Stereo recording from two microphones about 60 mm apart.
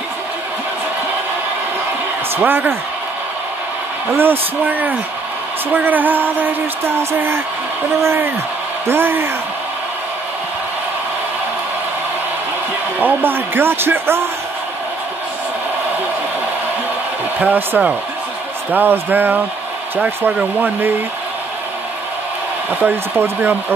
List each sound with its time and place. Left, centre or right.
2.3 s speech: right
4.2 s speech: right
7.0 s speech: right
13.0 s speech: right
17.4 s speech: right
22.7 s speech: right
23.1 s speech: right